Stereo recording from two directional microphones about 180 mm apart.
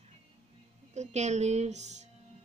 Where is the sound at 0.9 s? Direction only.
40° right (ahead or behind).